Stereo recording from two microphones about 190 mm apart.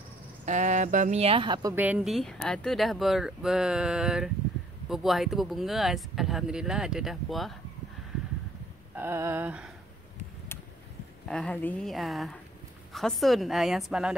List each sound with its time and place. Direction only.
0.5 s speech: 40° right (ahead or behind); by 1.8 s 20° right (ahead or behind)
1.8 s speech: 5° right (ahead or behind)
8.9 s a sound: 10° right (ahead or behind)
11.2 s speech: 5° left (ahead or behind)